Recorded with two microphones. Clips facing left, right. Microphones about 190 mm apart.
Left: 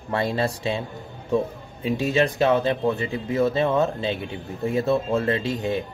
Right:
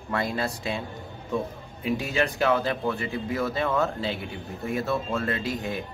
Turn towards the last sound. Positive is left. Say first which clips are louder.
# left 5 dB
turn(degrees=25)  # may be behind; listen again after turning